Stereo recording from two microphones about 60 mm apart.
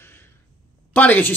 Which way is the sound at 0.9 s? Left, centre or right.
Left.